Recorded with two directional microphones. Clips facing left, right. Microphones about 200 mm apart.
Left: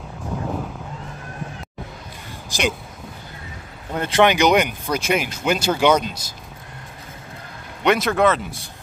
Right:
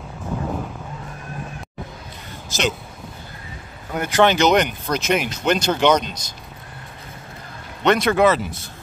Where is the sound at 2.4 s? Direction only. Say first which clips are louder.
Even; 15° left (ahead or behind).